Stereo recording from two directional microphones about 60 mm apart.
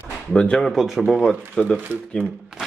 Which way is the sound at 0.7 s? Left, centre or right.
Centre.